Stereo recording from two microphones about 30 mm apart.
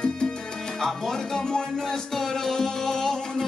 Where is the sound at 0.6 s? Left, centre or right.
Left.